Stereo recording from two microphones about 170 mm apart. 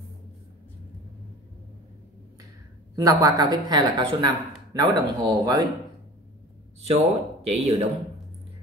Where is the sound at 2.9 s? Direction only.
20° right (ahead or behind).